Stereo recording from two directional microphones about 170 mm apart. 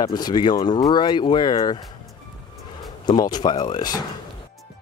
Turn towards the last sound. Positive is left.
turn(degrees=25)  # may be behind; listen again after turning